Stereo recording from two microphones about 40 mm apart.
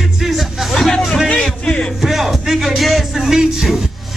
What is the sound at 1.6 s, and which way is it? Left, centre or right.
Music, centre.